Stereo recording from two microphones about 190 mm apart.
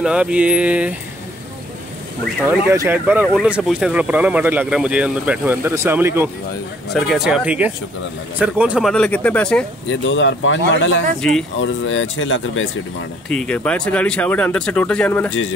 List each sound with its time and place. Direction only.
0.0 s speech: 5° right (ahead or behind)
2.4 s speech: 15° right (ahead or behind)
8.9 s speech: 5° left (ahead or behind)
9.8 s speech: 75° left (ahead or behind)
11.1 s speech: centre (ahead or behind)
11.6 s speech: 90° left
13.3 s speech: 5° left (ahead or behind)